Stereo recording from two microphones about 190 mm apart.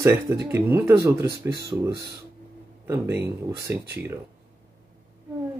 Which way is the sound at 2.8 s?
15° right (ahead or behind).